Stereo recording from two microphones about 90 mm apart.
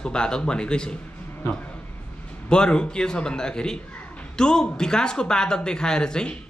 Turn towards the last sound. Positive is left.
turn(degrees=10)  # may be behind; listen again after turning